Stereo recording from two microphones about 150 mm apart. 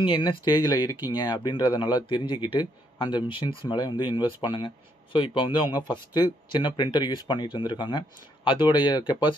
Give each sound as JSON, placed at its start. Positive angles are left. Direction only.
{"t": 0.0, "sound": "speech", "side_deg": 35}